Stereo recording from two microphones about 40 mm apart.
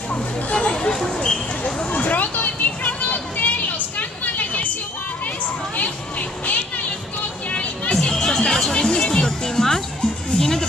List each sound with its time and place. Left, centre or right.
0.1 s speech: left
1.8 s vehicle: left
5.8 s a sound: left
7.5 s music: left
7.9 s music: centre